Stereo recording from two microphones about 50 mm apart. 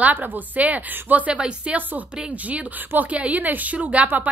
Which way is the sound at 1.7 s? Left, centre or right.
Right.